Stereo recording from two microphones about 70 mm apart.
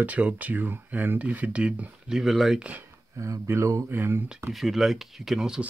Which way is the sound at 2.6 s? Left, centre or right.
Right.